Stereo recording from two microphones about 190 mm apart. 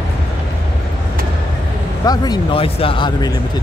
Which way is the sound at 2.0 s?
20° left (ahead or behind).